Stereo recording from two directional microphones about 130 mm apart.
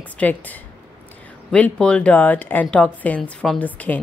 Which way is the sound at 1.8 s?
10° left (ahead or behind).